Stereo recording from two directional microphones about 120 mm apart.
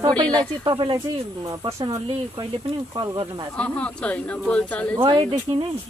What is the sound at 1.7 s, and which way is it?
Speech, 25° right (ahead or behind).